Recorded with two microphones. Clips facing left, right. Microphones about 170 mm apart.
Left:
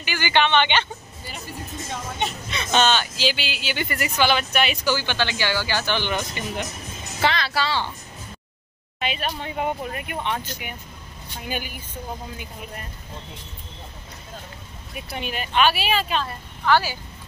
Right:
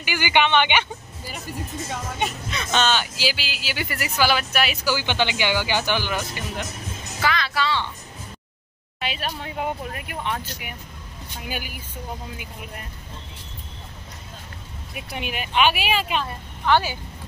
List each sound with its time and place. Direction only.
0.0 s speech: 15° right (ahead or behind)
2.1 s speech: centre (ahead or behind)
5.0 s speech: 15° right (ahead or behind)
6.0 s speech: 5° right (ahead or behind)
7.2 s speech: 30° left (ahead or behind)
9.0 s speech: 5° right (ahead or behind)
15.0 s speech: 10° right (ahead or behind)